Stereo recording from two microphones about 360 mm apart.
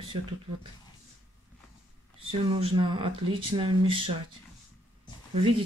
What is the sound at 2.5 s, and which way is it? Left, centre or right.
Speech, centre.